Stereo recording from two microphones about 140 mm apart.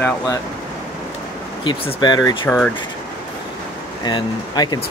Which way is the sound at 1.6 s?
35° left (ahead or behind).